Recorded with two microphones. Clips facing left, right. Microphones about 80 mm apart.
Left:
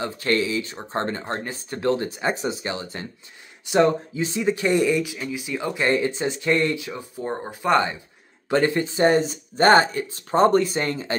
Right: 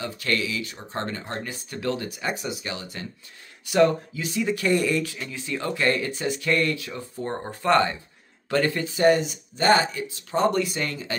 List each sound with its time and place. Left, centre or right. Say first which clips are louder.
0.0 s speech: left 4 dB; left